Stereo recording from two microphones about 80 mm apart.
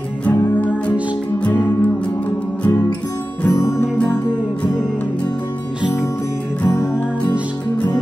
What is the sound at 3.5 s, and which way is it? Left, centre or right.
Music, left.